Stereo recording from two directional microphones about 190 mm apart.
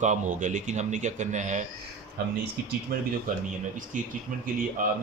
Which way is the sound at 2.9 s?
55° right (ahead or behind).